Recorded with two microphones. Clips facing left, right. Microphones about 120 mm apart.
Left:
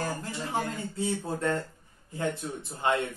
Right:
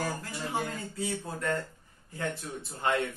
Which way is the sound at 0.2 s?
25° left (ahead or behind).